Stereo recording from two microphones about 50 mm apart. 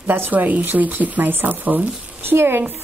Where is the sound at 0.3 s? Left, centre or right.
Right.